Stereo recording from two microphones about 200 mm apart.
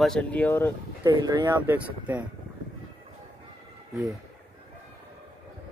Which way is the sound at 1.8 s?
5° right (ahead or behind).